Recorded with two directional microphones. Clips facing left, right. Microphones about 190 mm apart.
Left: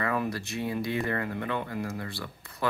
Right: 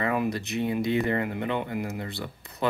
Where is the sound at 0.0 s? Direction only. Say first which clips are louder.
Right 3 dB; 20° right (ahead or behind).